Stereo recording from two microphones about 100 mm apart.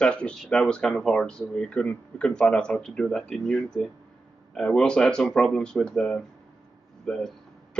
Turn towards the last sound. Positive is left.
turn(degrees=5)  # may be behind; listen again after turning